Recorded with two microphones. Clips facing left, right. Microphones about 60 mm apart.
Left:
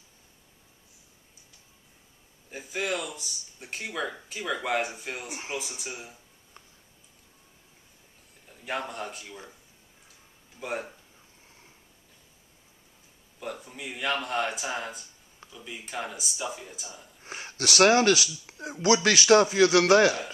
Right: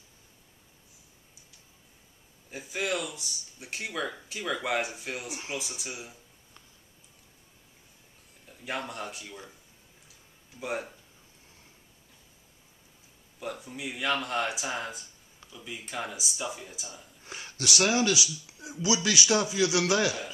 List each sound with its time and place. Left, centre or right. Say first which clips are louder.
2.5 s speech: left 1 dB; centre
8.6 s speech: left 2 dB; centre
10.6 s speech: even; centre
13.4 s speech: right 1 dB; centre
17.2 s speech: left 3 dB; left